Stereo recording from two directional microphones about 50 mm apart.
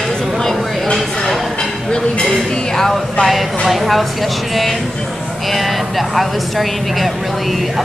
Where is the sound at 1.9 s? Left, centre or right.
Centre.